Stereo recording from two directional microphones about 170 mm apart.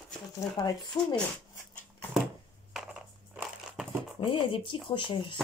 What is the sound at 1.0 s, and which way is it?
Speech, 20° left (ahead or behind).